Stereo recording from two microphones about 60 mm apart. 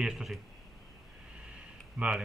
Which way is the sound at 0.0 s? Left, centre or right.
Centre.